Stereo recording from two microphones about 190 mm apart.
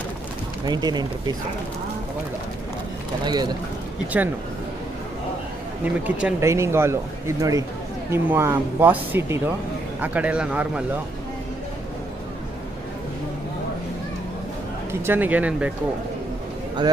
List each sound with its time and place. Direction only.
0.7 s speech: 20° right (ahead or behind)
3.3 s speech: 20° right (ahead or behind)
4.1 s speech: 10° right (ahead or behind)
5.9 s speech: 5° right (ahead or behind)
14.9 s speech: 10° right (ahead or behind)